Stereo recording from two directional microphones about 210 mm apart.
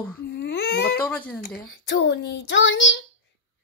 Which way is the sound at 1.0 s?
5° left (ahead or behind).